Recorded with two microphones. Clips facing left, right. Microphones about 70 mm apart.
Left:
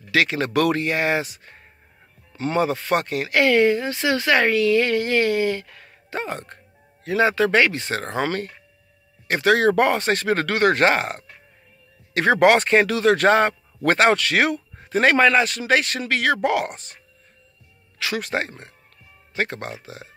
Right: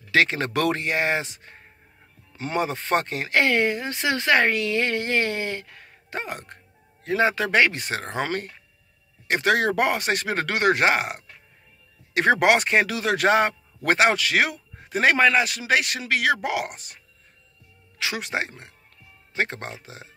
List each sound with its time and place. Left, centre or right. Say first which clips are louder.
0.1 s speech: left 1 dB; right; by 16.9 s centre
17.9 s speech: left 3 dB; centre